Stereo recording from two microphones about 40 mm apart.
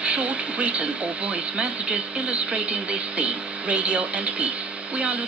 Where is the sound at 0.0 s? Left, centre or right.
Right.